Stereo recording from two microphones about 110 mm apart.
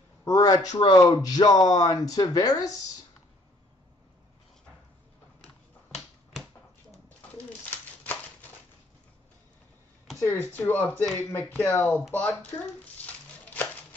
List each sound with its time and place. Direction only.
0.2 s speech: 30° left (ahead or behind)
7.4 s bird: 15° left (ahead or behind)
10.2 s speech: 20° left (ahead or behind)
12.9 s a sound: 15° left (ahead or behind)